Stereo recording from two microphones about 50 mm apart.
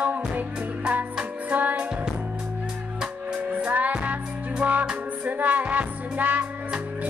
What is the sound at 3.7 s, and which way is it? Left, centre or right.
Music, right.